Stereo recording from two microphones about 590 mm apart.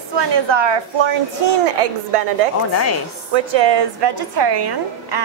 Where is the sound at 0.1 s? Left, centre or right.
Right.